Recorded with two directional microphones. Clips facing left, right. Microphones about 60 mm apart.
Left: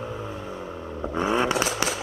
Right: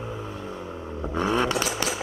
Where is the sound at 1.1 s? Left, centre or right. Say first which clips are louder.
Left 1 dB; centre.